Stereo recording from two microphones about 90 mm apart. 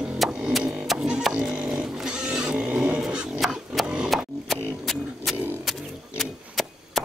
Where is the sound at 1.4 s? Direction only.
10° right (ahead or behind).